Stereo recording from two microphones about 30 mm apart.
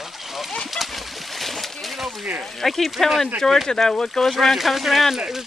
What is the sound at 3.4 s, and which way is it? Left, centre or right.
Speech, centre.